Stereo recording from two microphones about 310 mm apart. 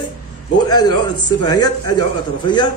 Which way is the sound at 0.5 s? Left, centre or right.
Centre.